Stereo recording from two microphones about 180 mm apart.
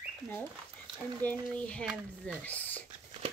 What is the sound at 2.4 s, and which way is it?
Speech, 10° left (ahead or behind).